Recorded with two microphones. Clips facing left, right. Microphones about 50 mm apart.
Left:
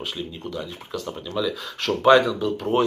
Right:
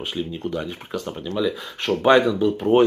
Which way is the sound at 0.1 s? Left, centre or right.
Centre.